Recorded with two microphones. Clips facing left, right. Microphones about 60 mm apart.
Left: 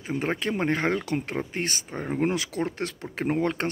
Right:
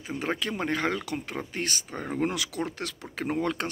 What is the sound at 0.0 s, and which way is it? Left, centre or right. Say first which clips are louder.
Speech: left 3 dB; left.